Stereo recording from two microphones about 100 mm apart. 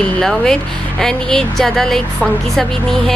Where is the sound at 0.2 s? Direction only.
5° left (ahead or behind).